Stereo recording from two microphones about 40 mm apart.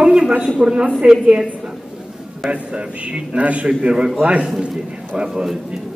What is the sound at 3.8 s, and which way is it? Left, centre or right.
A woman's voice, right.